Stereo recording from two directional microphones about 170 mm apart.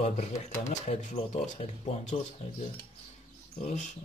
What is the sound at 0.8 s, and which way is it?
Speech, 40° left (ahead or behind).